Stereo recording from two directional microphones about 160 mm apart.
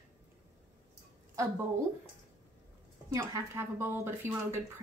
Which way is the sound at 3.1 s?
15° right (ahead or behind).